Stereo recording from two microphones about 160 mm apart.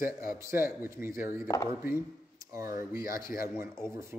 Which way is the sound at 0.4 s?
15° right (ahead or behind).